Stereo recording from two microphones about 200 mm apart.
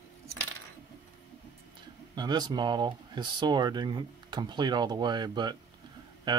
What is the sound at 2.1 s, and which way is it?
Speech, 20° right (ahead or behind).